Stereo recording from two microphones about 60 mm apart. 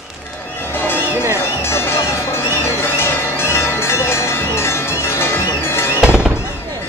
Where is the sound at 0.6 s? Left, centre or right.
Left.